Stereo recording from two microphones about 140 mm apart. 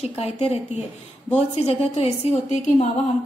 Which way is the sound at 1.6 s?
45° left (ahead or behind).